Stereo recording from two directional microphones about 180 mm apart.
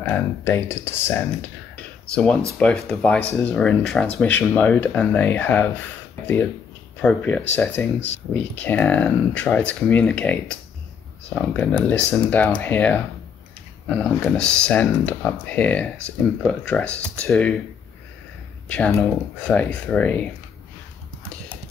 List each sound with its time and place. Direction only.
0.0 s speech: 15° left (ahead or behind)
1.8 s a sound: 5° left (ahead or behind)
2.5 s speech: 5° left (ahead or behind)
7.0 s speech: 10° left (ahead or behind)
18.7 s speech: 5° left (ahead or behind)